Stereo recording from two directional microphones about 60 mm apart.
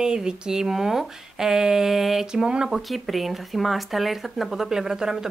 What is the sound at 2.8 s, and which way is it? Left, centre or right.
Speech, centre.